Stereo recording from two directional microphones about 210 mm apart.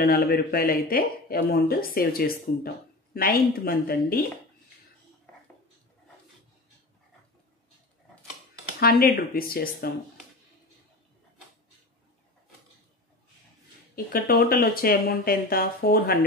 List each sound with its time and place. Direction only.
0.0 s speech: 45° left (ahead or behind)
8.7 s speech: 45° left (ahead or behind)
13.9 s speech: 45° left (ahead or behind)